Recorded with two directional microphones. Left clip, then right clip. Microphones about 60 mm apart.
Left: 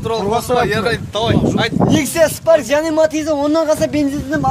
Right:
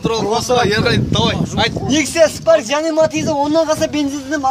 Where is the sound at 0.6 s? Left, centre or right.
Right.